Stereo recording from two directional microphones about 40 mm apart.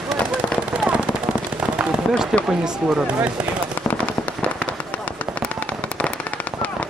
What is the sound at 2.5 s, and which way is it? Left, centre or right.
Speech, right.